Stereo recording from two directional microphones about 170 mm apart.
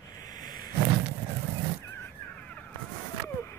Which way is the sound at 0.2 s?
20° left (ahead or behind).